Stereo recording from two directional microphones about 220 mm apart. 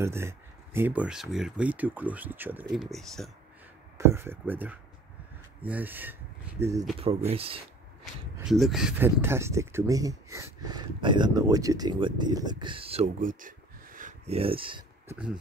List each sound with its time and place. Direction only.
0.0 s speech: 10° right (ahead or behind)
4.0 s speech: 10° right (ahead or behind)
7.2 s speech: 25° right (ahead or behind)
8.0 s speech: centre (ahead or behind); by 14.8 s 25° right (ahead or behind)